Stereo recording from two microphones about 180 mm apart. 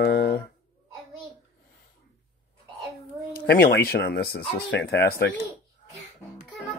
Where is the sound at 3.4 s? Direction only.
65° left (ahead or behind).